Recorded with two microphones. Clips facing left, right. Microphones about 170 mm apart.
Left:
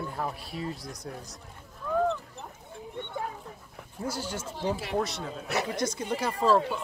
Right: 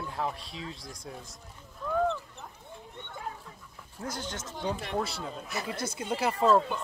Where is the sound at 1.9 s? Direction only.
Centre (ahead or behind).